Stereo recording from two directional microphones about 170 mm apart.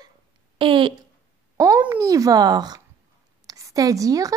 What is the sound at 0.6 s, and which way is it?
A woman's voice, 30° right (ahead or behind).